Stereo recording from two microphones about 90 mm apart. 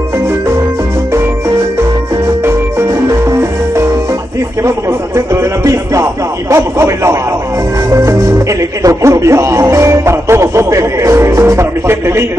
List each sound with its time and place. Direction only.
2.4 s music: 35° right (ahead or behind)
6.5 s a man's voice: 30° right (ahead or behind)